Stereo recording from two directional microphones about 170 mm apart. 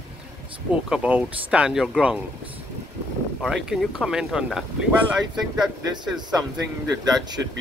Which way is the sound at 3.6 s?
5° right (ahead or behind).